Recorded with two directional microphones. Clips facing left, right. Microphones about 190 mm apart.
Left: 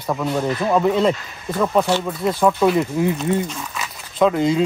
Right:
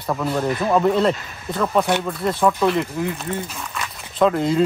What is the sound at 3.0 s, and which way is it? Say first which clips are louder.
Speech: left 5 dB; 20° left (ahead or behind).